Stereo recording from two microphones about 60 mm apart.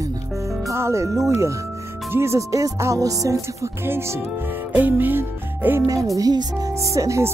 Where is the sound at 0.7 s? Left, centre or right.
Right.